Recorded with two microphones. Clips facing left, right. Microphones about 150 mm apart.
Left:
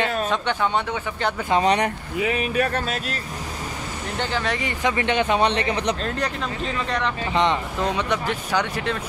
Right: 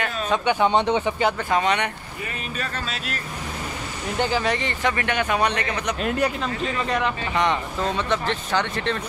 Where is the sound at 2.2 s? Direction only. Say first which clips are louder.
Left 10 dB; 70° left (ahead or behind).